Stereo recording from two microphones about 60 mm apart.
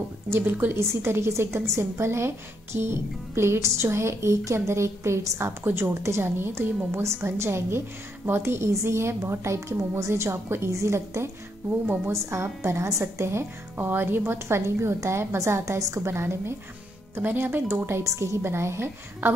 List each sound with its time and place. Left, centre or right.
0.3 s a woman's voice: right
0.7 s a woman's voice: right
14.6 s a woman's voice: right